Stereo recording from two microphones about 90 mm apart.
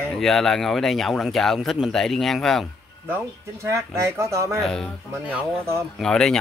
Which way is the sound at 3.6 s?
35° right (ahead or behind).